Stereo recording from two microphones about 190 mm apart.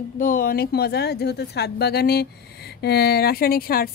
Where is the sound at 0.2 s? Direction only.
50° left (ahead or behind).